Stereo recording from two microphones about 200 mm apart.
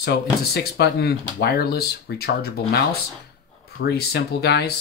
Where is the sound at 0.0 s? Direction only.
55° left (ahead or behind).